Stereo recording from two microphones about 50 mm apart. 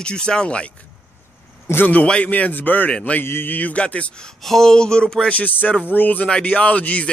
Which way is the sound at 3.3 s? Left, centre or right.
Left.